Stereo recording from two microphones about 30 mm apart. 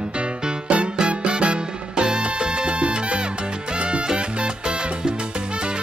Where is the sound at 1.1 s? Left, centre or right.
Right.